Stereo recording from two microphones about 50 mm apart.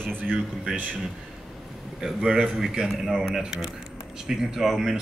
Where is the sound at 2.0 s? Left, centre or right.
Centre.